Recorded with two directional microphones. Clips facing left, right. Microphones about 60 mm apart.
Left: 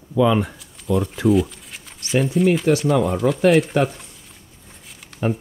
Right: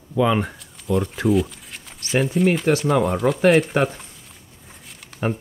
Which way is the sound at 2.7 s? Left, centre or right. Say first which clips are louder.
Left 1 dB; right.